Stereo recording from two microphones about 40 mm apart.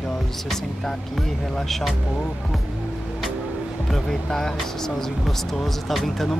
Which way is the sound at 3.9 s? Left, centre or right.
Centre.